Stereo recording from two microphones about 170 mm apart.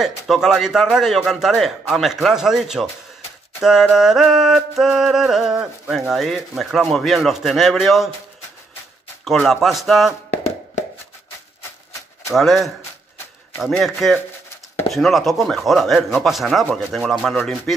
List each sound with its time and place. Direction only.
0.0 s music: centre (ahead or behind)
9.2 s music: centre (ahead or behind)
10.3 s hands: 40° left (ahead or behind)
12.4 s music: centre (ahead or behind)